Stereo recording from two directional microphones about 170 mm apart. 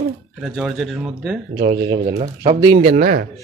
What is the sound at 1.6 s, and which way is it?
Speech, 30° right (ahead or behind).